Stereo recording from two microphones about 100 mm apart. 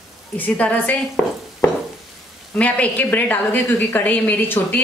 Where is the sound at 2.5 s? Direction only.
15° left (ahead or behind).